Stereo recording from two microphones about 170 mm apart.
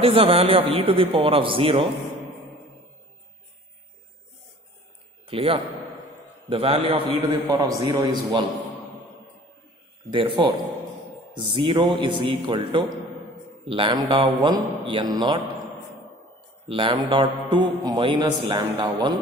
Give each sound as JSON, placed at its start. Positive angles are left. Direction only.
{"t": 0.0, "sound": "a man's voice", "side_deg": -35}
{"t": 5.2, "sound": "a man's voice", "side_deg": -35}
{"t": 7.1, "sound": "a man's voice", "side_deg": -20}
{"t": 10.1, "sound": "a man's voice", "side_deg": -30}
{"t": 16.6, "sound": "a man's voice", "side_deg": -30}